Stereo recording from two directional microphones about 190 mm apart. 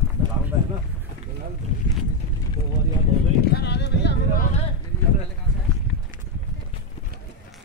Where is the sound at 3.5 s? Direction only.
60° left (ahead or behind).